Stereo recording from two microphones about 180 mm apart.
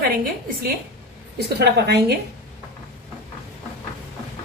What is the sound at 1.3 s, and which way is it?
Speech, 70° right (ahead or behind).